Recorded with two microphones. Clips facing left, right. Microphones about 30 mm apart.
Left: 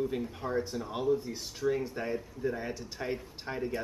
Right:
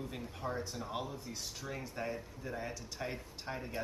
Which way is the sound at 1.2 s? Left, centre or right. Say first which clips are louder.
Left 7 dB; centre.